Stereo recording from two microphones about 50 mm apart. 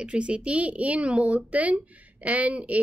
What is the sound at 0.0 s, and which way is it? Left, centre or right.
A woman's voice, right.